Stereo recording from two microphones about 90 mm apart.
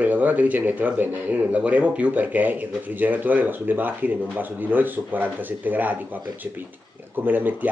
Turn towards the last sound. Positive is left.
turn(degrees=-20)  # may be behind; listen again after turning